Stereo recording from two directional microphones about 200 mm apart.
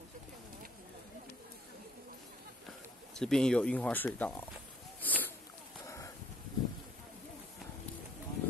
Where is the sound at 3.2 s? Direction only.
5° left (ahead or behind).